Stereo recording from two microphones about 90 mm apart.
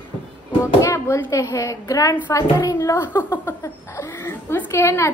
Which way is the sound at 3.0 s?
25° left (ahead or behind).